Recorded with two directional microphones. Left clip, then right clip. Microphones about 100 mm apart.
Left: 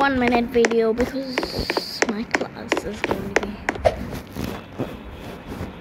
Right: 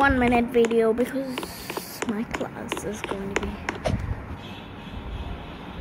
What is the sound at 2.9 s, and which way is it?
Speech, 20° left (ahead or behind).